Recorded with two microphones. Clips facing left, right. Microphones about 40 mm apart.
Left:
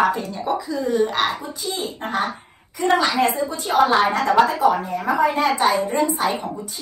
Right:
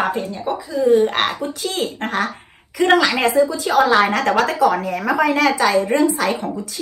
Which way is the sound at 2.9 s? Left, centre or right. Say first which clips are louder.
Right 2 dB; right.